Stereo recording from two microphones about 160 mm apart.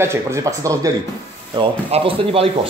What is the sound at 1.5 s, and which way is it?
Speech, 35° right (ahead or behind).